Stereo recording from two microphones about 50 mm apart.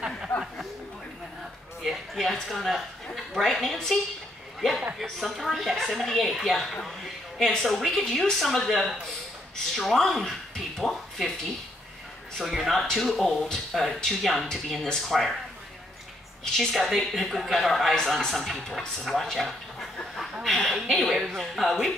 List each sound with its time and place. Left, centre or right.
1.8 s a sound: centre
2.4 s a woman's voice: centre
12.4 s a woman's voice: centre
16.5 s a woman's voice: centre